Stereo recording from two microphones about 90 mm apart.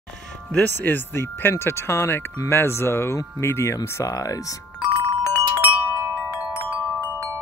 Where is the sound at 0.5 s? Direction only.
20° left (ahead or behind); by 4.6 s 40° left (ahead or behind).